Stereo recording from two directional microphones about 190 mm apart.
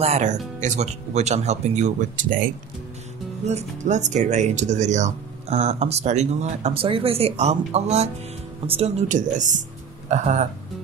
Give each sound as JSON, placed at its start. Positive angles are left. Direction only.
{"t": 0.0, "sound": "speech", "side_deg": -35}
{"t": 3.4, "sound": "speech", "side_deg": -35}